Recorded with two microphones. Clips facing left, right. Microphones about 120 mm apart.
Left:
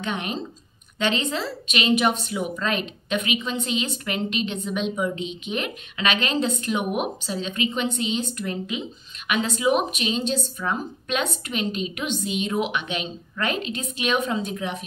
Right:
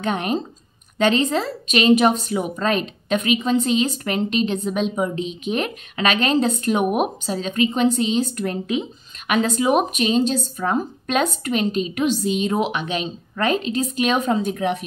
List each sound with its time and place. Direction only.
0.0 s a woman's voice: 45° right (ahead or behind); by 14.9 s 60° right (ahead or behind)